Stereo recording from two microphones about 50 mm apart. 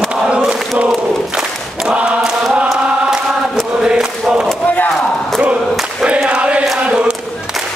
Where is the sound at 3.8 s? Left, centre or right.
Centre.